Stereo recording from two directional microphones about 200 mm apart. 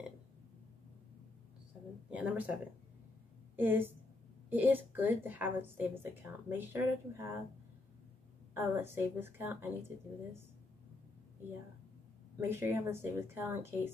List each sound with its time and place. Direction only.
2.0 s a woman's voice: 5° right (ahead or behind)
8.5 s a woman's voice: 10° right (ahead or behind)
12.4 s a woman's voice: 10° right (ahead or behind)